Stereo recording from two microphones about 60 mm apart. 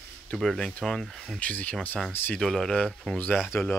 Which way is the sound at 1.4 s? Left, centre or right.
Left.